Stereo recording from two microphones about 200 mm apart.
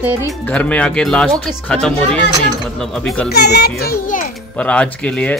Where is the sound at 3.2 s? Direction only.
55° left (ahead or behind).